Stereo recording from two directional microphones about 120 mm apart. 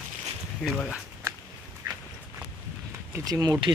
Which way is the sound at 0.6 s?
5° left (ahead or behind).